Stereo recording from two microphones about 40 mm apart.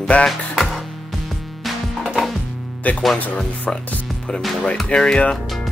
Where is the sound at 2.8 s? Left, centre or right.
Left.